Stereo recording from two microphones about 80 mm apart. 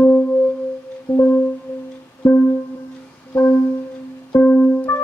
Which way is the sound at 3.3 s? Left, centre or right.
Centre.